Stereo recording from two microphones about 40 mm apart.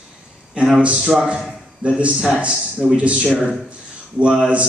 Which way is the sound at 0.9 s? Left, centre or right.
Centre.